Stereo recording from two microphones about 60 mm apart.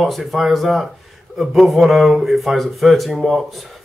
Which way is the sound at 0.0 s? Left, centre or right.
Centre.